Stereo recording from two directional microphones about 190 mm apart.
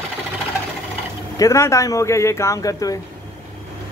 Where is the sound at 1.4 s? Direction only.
15° left (ahead or behind).